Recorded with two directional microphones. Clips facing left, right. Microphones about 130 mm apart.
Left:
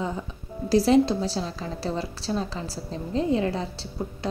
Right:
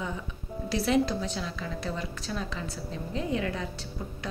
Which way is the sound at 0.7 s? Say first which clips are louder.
Left 7 dB; 35° left (ahead or behind).